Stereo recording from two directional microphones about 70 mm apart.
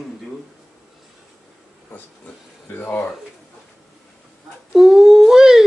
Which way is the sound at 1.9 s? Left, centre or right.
Left.